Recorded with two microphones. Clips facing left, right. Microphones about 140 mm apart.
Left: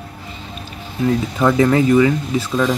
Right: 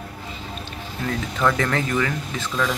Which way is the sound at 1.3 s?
15° left (ahead or behind).